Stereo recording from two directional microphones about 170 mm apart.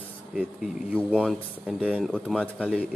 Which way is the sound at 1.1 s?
5° left (ahead or behind).